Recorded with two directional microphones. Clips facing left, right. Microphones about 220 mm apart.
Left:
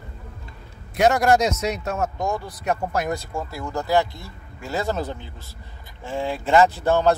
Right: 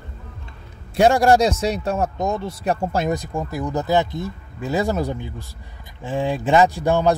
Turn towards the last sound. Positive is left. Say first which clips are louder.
# right 1 dB
turn(degrees=-15)  # may be behind; listen again after turning